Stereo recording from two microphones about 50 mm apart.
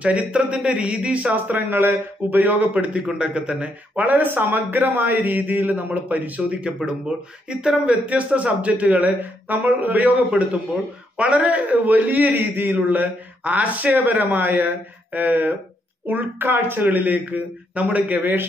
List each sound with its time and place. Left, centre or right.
0.0 s speech: right
1.3 s a man's voice: right
2.7 s speech: right
4.3 s a man's voice: right
6.6 s a man's voice: centre; by 18.5 s right